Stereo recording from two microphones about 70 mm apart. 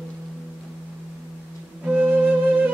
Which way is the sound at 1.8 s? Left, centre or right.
Centre.